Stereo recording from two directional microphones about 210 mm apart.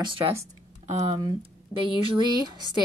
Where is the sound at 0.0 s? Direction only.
25° right (ahead or behind).